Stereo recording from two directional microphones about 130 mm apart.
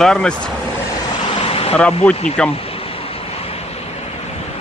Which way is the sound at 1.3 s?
50° left (ahead or behind).